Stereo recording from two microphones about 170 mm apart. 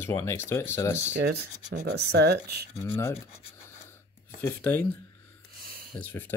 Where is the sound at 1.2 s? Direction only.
70° right (ahead or behind).